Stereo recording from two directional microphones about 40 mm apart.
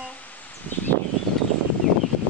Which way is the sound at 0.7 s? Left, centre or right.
Left.